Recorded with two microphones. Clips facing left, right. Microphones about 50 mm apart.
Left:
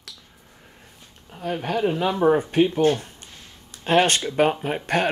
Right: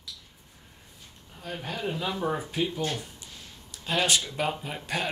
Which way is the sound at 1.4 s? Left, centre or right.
Left.